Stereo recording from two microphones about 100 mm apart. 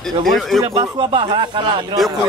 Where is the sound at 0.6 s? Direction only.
75° right (ahead or behind); by 1.6 s 55° right (ahead or behind).